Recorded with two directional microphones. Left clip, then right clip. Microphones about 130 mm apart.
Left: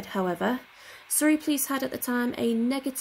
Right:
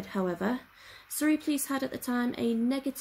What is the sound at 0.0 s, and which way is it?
Speech, 20° left (ahead or behind).